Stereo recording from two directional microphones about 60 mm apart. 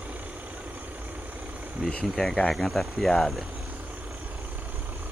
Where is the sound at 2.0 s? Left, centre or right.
Centre.